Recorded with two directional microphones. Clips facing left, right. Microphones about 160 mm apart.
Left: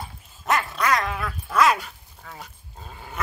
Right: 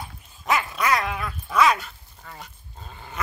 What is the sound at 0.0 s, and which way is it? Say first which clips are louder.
Dog: left 1 dB; centre (ahead or behind).